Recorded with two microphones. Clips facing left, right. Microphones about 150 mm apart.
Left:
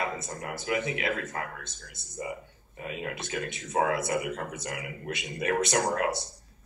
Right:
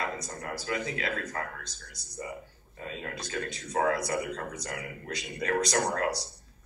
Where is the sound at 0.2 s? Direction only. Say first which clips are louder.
Left 1 dB; 25° left (ahead or behind).